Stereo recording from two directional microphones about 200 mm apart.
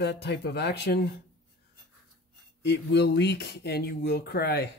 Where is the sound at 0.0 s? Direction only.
60° left (ahead or behind).